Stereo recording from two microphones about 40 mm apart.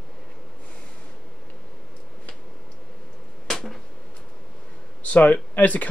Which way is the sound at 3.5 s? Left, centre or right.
Centre.